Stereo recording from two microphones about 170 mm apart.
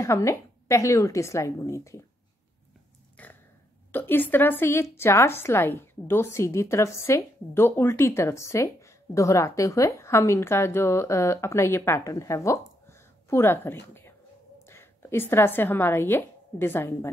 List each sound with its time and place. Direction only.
0.0 s a woman's voice: 15° left (ahead or behind)
3.2 s a sound: 10° left (ahead or behind)
3.9 s a woman's voice: 10° left (ahead or behind)